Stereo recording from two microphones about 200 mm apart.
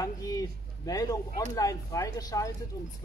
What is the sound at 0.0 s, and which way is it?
Speech, 15° left (ahead or behind).